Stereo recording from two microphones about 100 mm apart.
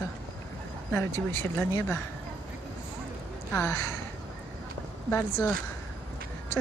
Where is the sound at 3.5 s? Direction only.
25° left (ahead or behind).